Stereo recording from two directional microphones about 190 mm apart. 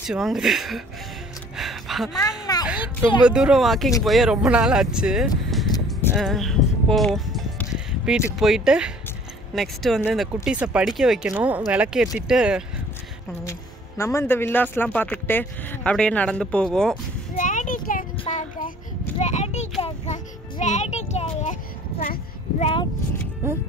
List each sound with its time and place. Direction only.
0.0 s speech: 5° right (ahead or behind)
1.6 s a sound: centre (ahead or behind)
2.4 s children playing: 20° left (ahead or behind)
2.7 s a child's voice: 5° right (ahead or behind)
5.9 s music: centre (ahead or behind)
8.4 s speech: centre (ahead or behind)
13.4 s speech: 15° left (ahead or behind)
17.4 s a sound: 45° left (ahead or behind)
18.3 s child singing: 35° left (ahead or behind)
19.1 s a sound: 35° left (ahead or behind)
19.8 s music: 35° left (ahead or behind)
22.6 s speech: 30° left (ahead or behind)